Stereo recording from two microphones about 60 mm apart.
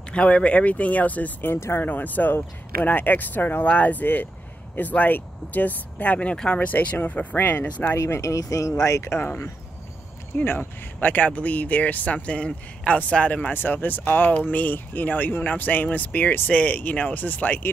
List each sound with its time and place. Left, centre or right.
0.1 s speech: centre
1.5 s speech: left
1.8 s speech: left
8.1 s speech: left
10.3 s speech: left